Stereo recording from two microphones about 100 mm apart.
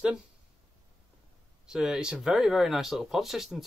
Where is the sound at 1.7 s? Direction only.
5° right (ahead or behind).